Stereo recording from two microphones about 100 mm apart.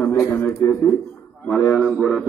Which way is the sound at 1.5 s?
10° left (ahead or behind).